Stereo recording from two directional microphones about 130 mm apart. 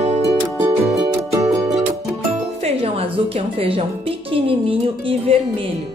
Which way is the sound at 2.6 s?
50° right (ahead or behind).